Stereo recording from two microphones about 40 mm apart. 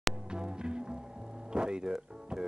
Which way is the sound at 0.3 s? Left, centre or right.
Right.